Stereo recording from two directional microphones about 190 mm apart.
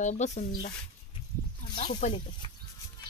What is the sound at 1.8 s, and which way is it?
Speech, 40° left (ahead or behind).